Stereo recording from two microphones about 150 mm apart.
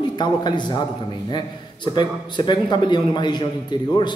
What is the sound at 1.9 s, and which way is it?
A man's voice, 30° left (ahead or behind).